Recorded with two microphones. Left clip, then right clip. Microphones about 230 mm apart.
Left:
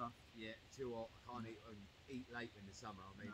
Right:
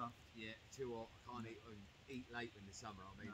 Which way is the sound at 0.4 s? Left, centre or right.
Centre.